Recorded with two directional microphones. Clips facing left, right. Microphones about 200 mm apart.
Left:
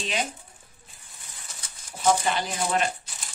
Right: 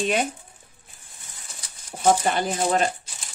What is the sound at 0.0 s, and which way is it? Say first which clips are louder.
Speech: right 7 dB; 55° right (ahead or behind).